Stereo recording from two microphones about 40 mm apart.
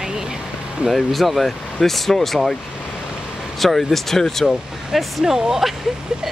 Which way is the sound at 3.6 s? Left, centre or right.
Centre.